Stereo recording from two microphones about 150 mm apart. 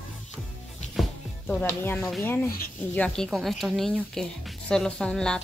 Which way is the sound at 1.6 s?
15° left (ahead or behind).